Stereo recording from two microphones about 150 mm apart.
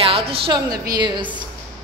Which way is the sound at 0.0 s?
40° right (ahead or behind).